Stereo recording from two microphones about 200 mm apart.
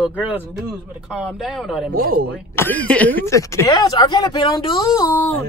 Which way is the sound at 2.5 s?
10° left (ahead or behind).